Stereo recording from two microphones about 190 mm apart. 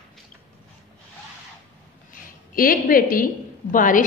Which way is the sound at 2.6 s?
50° left (ahead or behind).